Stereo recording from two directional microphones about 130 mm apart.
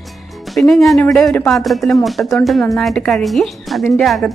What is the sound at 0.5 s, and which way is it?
Speech, centre (ahead or behind).